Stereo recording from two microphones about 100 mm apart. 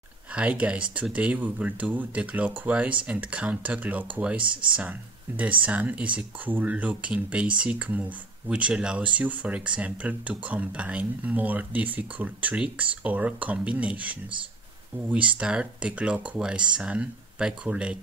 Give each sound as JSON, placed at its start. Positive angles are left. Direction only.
{"t": 0.3, "sound": "speech", "side_deg": -10}
{"t": 4.4, "sound": "speech", "side_deg": -55}
{"t": 5.4, "sound": "speech", "side_deg": -15}
{"t": 15.4, "sound": "speech", "side_deg": -10}